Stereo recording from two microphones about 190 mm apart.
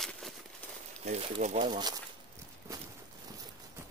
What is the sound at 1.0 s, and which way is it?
Speech, 35° right (ahead or behind).